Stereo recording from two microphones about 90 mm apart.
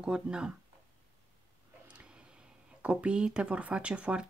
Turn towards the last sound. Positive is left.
turn(degrees=-10)  # may be behind; listen again after turning